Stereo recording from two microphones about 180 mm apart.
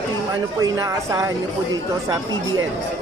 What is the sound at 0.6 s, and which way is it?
Speech, 20° right (ahead or behind).